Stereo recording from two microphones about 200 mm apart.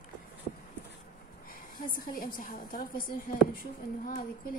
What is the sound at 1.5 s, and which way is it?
A woman's voice, 45° left (ahead or behind).